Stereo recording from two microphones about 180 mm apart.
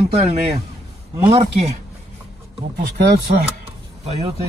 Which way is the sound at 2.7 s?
60° right (ahead or behind).